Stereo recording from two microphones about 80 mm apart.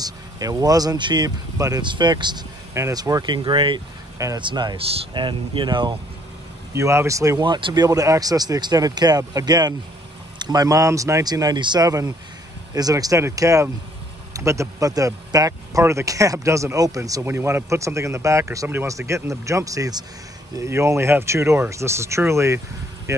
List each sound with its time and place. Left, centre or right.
0.0 s speech: right
0.9 s speech: right
2.9 s speech: right
4.4 s speech: right
6.7 s speech: right
7.3 s speech: right
11.2 s speech: right
17.2 s speech: right
20.5 s speech: right